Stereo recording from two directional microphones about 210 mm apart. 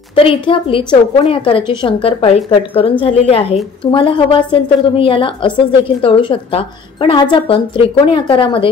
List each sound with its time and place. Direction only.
0.1 s a woman's voice: 25° left (ahead or behind)